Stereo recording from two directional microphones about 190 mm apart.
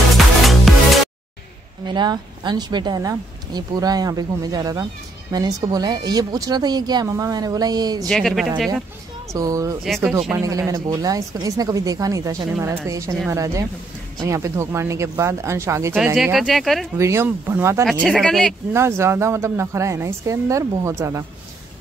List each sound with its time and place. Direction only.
1.9 s speech: 25° right (ahead or behind)
8.1 s speech: centre (ahead or behind)
9.3 s speech: 15° right (ahead or behind)
16.2 s speech: centre (ahead or behind)
17.0 s speech: 15° right (ahead or behind)
18.0 s speech: centre (ahead or behind)
18.7 s speech: 15° right (ahead or behind)